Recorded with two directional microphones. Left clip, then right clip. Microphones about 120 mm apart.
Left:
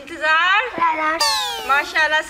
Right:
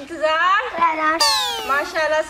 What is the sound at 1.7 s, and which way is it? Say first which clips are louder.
Speech: left 3 dB; 25° left (ahead or behind).